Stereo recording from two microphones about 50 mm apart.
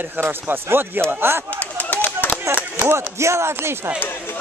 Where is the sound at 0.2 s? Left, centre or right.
Right.